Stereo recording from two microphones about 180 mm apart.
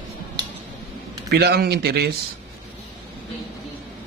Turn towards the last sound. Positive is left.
turn(degrees=-60)  # may be behind; listen again after turning